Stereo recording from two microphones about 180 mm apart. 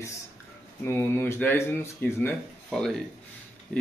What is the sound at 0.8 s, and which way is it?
Speech, 10° left (ahead or behind).